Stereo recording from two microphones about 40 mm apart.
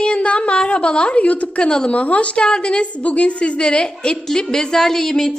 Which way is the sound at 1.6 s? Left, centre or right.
Left.